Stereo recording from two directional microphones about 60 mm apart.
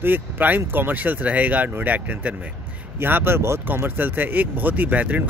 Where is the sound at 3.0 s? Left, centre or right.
Right.